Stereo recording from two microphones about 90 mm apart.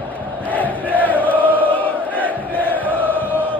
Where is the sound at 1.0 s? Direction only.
20° left (ahead or behind).